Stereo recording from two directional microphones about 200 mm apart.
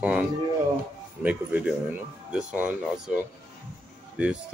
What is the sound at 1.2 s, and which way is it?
Speech, 10° right (ahead or behind).